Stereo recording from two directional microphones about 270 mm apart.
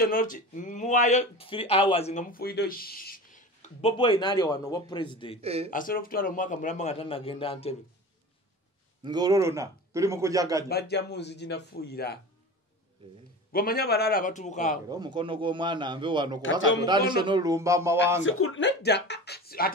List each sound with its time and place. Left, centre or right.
0.0 s speech: left
5.4 s speech: right
5.7 s speech: left
9.0 s a man's voice: centre
10.7 s speech: left
13.5 s speech: left
14.9 s a man's voice: centre
18.2 s speech: left